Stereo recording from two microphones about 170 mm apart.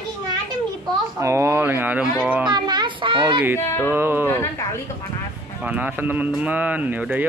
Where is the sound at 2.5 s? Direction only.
25° right (ahead or behind).